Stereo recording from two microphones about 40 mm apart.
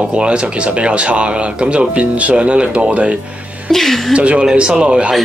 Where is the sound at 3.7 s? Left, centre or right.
Centre.